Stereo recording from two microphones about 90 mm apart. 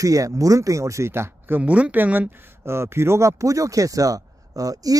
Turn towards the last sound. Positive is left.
turn(degrees=-40)  # may be behind; listen again after turning